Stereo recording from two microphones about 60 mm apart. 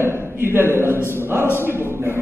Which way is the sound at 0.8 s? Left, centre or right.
Left.